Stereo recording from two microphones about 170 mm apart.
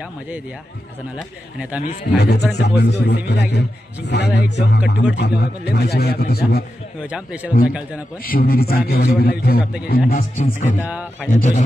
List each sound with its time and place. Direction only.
2.1 s a man's voice: 75° left (ahead or behind)
7.0 s a man's voice: 5° right (ahead or behind)
8.3 s a man's voice: 60° left (ahead or behind)
10.3 s speech: 45° left (ahead or behind)